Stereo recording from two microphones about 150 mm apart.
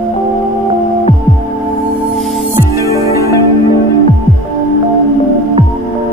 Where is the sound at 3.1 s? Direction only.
20° left (ahead or behind).